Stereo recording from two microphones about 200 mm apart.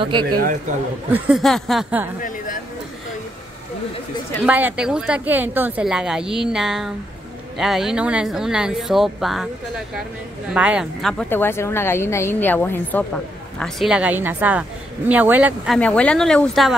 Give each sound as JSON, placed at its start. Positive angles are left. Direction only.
{"t": 0.3, "sound": "speech", "side_deg": -45}
{"t": 1.1, "sound": "speech", "side_deg": -5}
{"t": 2.2, "sound": "a sound", "side_deg": 45}
{"t": 4.5, "sound": "speech", "side_deg": -10}
{"t": 10.5, "sound": "a woman's voice", "side_deg": -5}
{"t": 13.6, "sound": "a woman's voice", "side_deg": 0}
{"t": 15.8, "sound": "speech", "side_deg": 5}